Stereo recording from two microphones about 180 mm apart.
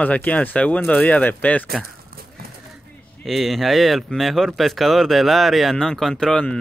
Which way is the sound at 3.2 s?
Centre (ahead or behind).